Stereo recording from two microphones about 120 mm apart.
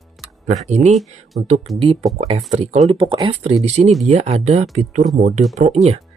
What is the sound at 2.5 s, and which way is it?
Speech, 65° right (ahead or behind).